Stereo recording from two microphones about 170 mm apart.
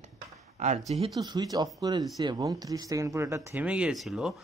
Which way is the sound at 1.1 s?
20° right (ahead or behind).